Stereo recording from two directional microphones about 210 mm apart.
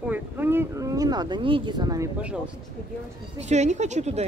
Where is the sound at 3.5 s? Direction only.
35° right (ahead or behind).